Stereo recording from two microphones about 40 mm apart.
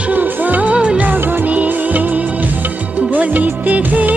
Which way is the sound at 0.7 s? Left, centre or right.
Right.